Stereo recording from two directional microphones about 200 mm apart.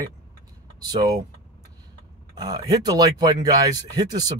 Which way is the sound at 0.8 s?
20° right (ahead or behind).